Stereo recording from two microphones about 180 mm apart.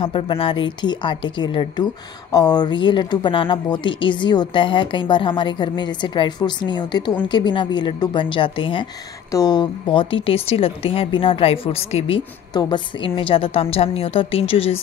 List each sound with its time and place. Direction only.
0.0 s a woman's voice: 30° left (ahead or behind)